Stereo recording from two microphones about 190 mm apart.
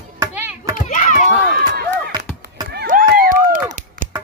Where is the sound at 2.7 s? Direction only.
55° right (ahead or behind).